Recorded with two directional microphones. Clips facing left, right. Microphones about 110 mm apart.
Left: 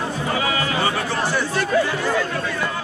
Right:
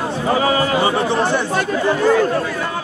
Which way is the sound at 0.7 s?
20° right (ahead or behind).